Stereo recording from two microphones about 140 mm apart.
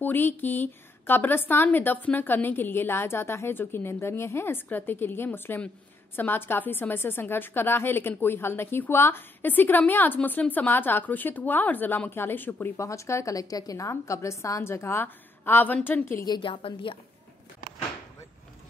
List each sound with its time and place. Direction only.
0.0 s a woman's voice: 15° left (ahead or behind)
16.3 s a woman's voice: 35° left (ahead or behind)